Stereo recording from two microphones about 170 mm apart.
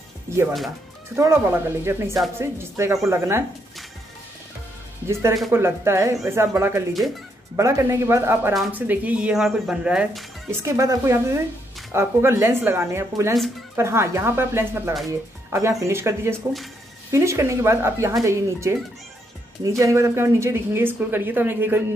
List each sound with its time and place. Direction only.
1.1 s speech: 15° right (ahead or behind)
5.0 s speech: 15° right (ahead or behind)
19.8 s speech: 15° right (ahead or behind)